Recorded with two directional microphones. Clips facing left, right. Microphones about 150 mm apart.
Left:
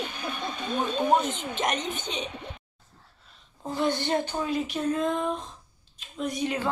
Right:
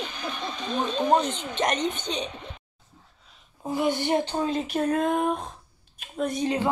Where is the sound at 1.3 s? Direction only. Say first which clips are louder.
Even; 50° left (ahead or behind).